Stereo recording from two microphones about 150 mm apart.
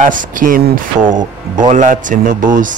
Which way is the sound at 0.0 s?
60° right (ahead or behind).